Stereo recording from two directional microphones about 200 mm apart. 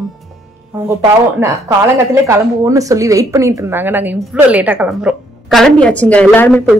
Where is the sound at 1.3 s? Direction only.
15° right (ahead or behind).